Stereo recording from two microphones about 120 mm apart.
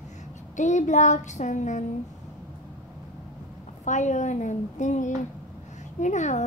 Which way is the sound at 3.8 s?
90° left.